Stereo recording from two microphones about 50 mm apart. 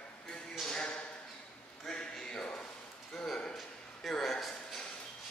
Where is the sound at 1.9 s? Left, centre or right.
Centre.